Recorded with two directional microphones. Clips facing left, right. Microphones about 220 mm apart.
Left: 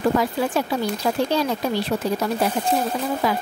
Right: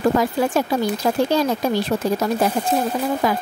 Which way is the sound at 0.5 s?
45° right (ahead or behind).